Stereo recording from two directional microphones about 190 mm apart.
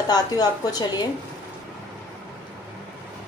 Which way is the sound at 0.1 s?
20° left (ahead or behind).